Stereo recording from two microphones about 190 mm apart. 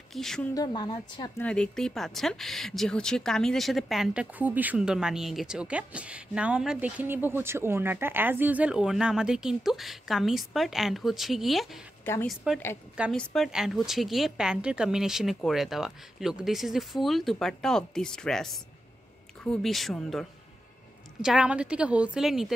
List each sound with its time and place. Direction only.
0.1 s speech: centre (ahead or behind)
0.6 s a woman's voice: 25° left (ahead or behind)
1.4 s speech: 5° left (ahead or behind)
12.0 s a woman's voice: 10° left (ahead or behind)
12.9 s speech: centre (ahead or behind)